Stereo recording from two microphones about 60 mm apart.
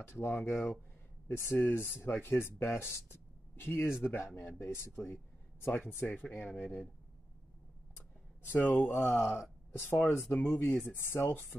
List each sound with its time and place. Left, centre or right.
0.0 s speech: left
5.7 s speech: left
8.5 s speech: left